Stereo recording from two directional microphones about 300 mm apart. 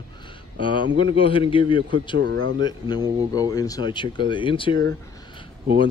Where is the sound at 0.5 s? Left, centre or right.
Centre.